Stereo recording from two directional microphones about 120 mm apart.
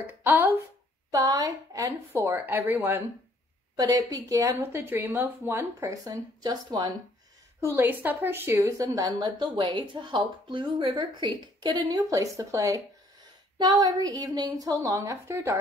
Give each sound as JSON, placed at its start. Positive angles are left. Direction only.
{"t": 0.0, "sound": "speech", "side_deg": -15}
{"t": 1.1, "sound": "a woman's voice", "side_deg": -30}
{"t": 3.7, "sound": "a woman's voice", "side_deg": -30}
{"t": 7.7, "sound": "a woman's voice", "side_deg": -15}